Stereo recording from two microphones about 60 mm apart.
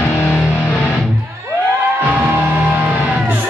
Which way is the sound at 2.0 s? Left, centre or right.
Right.